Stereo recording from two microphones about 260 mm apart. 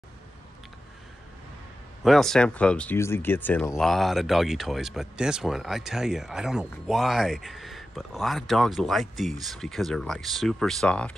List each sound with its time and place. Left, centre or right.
2.0 s speech: centre